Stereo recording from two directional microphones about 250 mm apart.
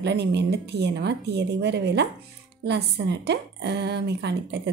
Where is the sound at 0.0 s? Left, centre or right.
Right.